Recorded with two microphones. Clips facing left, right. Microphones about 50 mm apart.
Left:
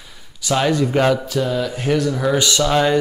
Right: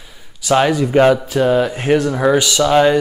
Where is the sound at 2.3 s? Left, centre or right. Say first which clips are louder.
Right 3 dB; centre.